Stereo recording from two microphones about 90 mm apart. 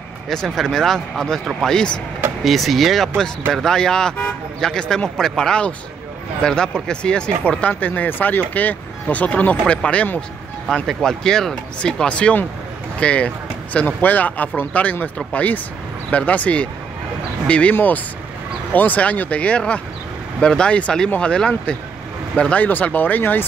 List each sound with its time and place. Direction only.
0.3 s a man's voice: 5° left (ahead or behind)
10.7 s speech: 5° left (ahead or behind)